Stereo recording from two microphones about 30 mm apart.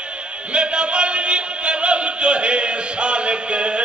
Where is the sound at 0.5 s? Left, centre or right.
Right.